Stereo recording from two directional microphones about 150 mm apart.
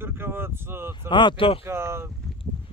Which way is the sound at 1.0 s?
30° left (ahead or behind).